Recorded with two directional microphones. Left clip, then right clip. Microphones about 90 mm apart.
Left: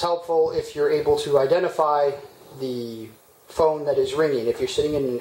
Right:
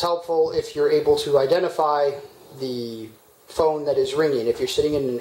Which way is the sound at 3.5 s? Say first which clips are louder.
Even; 30° right (ahead or behind).